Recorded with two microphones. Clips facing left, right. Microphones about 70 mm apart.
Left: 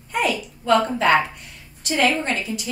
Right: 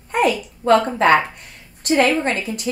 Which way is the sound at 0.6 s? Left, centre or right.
Right.